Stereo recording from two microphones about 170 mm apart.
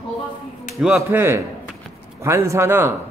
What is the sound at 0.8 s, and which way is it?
Speech, centre (ahead or behind).